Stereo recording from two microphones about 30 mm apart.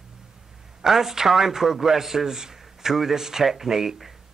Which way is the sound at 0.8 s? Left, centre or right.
Centre.